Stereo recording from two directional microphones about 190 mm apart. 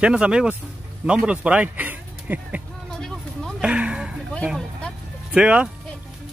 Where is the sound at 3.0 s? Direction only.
5° left (ahead or behind).